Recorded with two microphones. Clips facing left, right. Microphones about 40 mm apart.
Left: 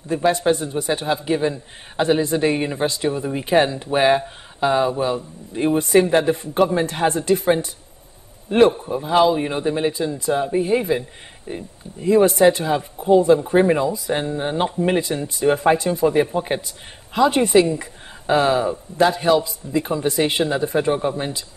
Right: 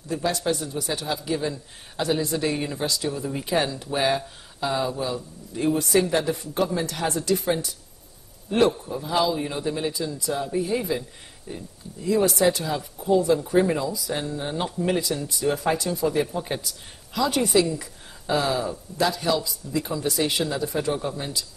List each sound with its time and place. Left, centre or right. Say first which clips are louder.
0.1 s a man's voice: left 7 dB; left